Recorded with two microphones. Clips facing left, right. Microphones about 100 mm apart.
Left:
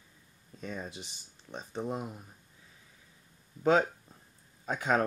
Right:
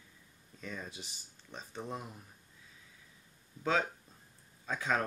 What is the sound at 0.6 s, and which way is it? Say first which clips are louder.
Speech: left 4 dB; 25° left (ahead or behind).